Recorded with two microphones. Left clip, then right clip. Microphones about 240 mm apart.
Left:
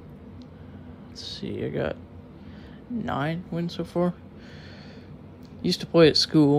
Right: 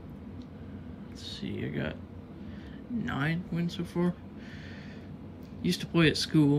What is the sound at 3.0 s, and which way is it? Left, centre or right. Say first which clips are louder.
Speech: left 5 dB; centre.